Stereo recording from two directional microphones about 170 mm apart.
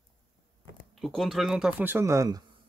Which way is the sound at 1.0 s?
Centre (ahead or behind).